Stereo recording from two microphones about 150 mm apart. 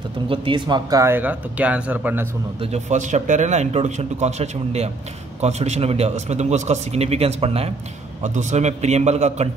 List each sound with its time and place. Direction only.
0.3 s speech: 30° right (ahead or behind); by 2.2 s 10° right (ahead or behind)
2.6 s speech: 50° right (ahead or behind)
8.2 s speech: 55° right (ahead or behind)